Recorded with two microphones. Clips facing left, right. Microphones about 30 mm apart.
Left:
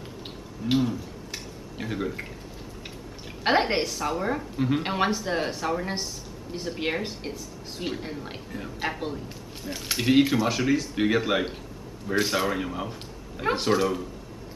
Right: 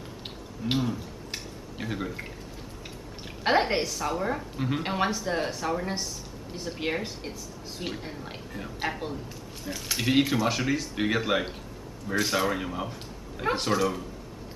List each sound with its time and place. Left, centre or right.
0.7 s a sound: centre
3.4 s a woman's voice: centre
4.8 s a woman's voice: centre
9.7 s a woman's voice: centre
9.9 s a woman's voice: centre